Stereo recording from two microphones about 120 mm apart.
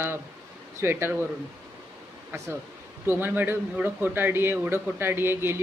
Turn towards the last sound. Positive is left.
turn(degrees=-20)  # may be behind; listen again after turning